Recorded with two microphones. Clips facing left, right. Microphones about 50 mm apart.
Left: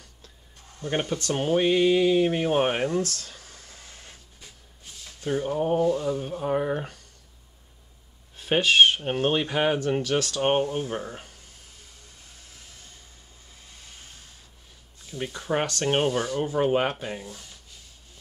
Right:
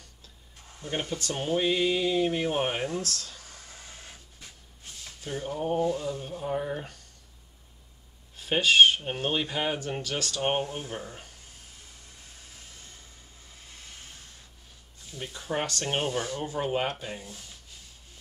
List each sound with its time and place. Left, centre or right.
0.8 s speech: left
1.3 s speech: left
3.0 s speech: centre
3.4 s printer: centre
5.2 s speech: centre
8.4 s speech: centre
9.8 s speech: centre
15.4 s speech: left